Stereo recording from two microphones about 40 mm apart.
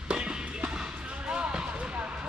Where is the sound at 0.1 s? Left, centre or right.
Right.